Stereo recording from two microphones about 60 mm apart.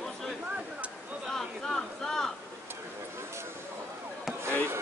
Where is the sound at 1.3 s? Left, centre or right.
Centre.